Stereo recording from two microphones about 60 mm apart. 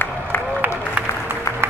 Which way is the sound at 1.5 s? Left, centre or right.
Left.